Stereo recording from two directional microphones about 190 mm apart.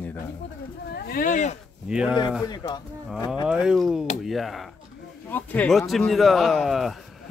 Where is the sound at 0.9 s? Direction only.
50° left (ahead or behind).